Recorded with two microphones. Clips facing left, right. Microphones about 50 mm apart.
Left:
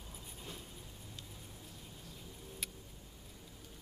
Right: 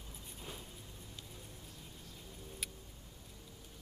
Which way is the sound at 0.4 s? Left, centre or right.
Centre.